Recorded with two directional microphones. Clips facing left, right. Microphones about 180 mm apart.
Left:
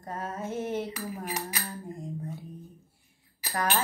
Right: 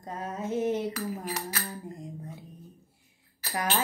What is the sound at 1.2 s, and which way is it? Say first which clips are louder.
Music: even; 15° left (ahead or behind).